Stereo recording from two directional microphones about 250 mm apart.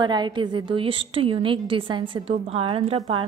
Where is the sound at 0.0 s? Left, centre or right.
Centre.